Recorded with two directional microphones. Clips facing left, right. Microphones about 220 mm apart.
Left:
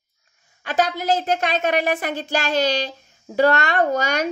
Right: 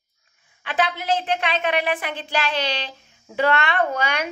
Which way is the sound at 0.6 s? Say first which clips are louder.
Left 3 dB; 40° left (ahead or behind).